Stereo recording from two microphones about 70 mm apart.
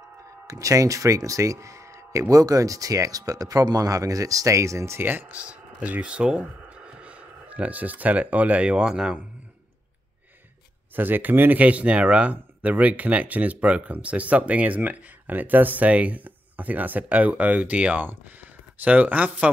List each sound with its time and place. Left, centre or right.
0.5 s speech: right
5.3 s speech: centre
11.0 s speech: right